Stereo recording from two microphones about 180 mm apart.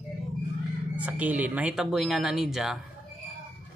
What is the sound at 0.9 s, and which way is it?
Speech, 10° right (ahead or behind).